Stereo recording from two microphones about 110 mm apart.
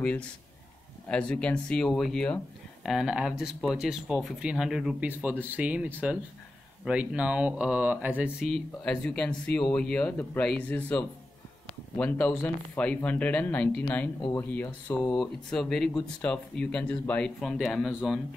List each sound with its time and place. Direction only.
0.0 s speech: 10° left (ahead or behind)
2.8 s speech: 5° right (ahead or behind)
5.1 s speech: 15° right (ahead or behind)
8.5 s speech: 5° left (ahead or behind)
12.0 s speech: 15° left (ahead or behind)
15.1 s speech: 5° left (ahead or behind)